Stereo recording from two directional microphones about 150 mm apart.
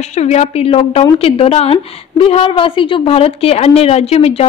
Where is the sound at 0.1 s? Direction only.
50° left (ahead or behind).